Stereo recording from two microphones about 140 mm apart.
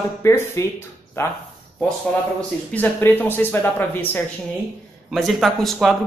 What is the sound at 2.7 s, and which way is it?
Speech, 10° left (ahead or behind).